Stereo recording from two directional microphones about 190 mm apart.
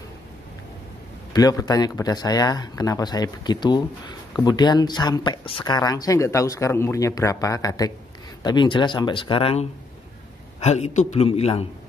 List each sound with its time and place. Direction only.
1.3 s a man's voice: 20° left (ahead or behind)